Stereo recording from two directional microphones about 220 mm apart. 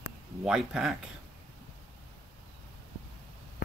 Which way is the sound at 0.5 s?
Centre (ahead or behind).